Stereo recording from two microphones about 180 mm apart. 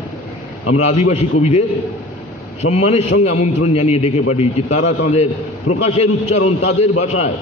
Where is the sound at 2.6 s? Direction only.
35° left (ahead or behind).